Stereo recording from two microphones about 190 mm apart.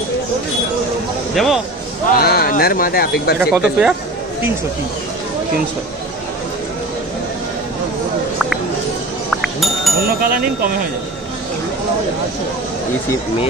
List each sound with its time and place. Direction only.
1.3 s speech: centre (ahead or behind)
2.1 s speech: 55° left (ahead or behind)
3.3 s speech: 10° right (ahead or behind)
9.3 s music: centre (ahead or behind)
10.0 s speech: 50° right (ahead or behind)